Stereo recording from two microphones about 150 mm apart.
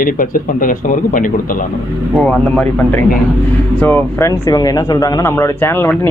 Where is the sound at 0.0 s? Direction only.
65° left (ahead or behind).